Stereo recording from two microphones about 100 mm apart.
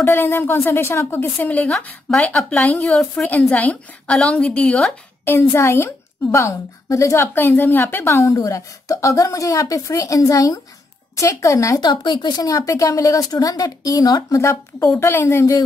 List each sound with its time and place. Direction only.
0.0 s a woman's voice: 20° left (ahead or behind)
5.2 s a woman's voice: 25° left (ahead or behind)
11.8 s a woman's voice: 50° left (ahead or behind); by 15.5 s 25° left (ahead or behind)